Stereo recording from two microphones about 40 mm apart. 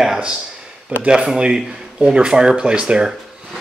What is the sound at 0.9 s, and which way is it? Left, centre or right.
Speech, right.